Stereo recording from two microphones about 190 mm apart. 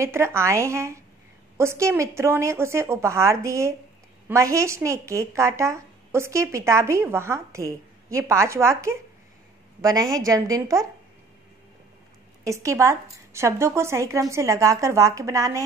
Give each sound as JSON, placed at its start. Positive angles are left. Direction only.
{"t": 0.0, "sound": "a woman's voice", "side_deg": -15}
{"t": 12.4, "sound": "a woman's voice", "side_deg": -15}